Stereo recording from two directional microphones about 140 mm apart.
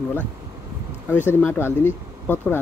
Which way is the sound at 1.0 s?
15° left (ahead or behind).